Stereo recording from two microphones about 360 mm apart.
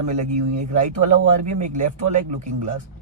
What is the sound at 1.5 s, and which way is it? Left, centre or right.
Speech, centre.